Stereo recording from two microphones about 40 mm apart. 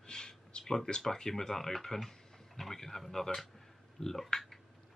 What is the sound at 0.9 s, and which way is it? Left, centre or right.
Speech, centre.